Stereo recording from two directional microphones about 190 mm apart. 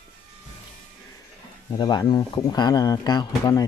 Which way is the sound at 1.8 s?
20° left (ahead or behind).